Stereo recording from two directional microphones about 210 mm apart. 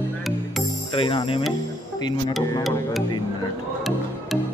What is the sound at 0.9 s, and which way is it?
Speech, 25° left (ahead or behind).